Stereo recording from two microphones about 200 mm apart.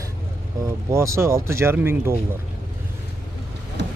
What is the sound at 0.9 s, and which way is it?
Speech, 15° right (ahead or behind).